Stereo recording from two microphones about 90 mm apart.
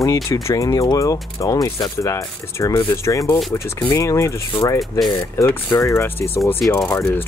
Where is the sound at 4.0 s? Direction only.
35° left (ahead or behind).